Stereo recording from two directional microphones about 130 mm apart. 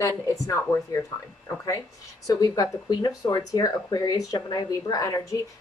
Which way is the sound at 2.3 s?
30° left (ahead or behind).